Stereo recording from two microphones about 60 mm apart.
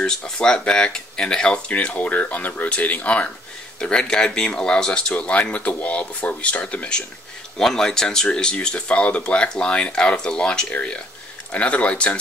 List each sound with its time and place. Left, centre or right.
0.0 s speech: centre
7.5 s speech: centre